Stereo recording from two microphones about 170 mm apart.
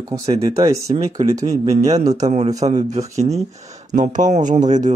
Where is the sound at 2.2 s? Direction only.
40° right (ahead or behind).